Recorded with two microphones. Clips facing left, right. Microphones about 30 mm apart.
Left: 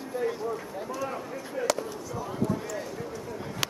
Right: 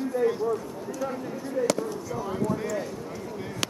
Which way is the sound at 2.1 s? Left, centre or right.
Centre.